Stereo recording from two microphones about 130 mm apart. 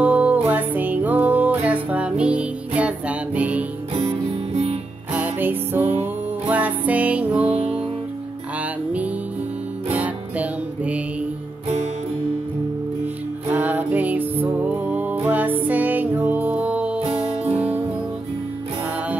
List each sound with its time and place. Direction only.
0.0 s music: 15° right (ahead or behind)
5.1 s music: 15° right (ahead or behind)
9.9 s music: 10° right (ahead or behind)
13.5 s music: 15° right (ahead or behind)